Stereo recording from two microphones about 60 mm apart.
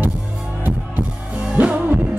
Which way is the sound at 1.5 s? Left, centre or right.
Right.